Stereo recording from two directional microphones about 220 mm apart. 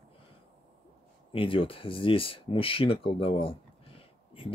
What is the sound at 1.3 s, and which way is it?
Speech, 25° left (ahead or behind).